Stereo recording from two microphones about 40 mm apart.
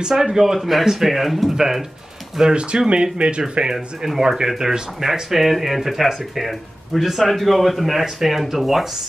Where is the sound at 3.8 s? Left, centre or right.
Centre.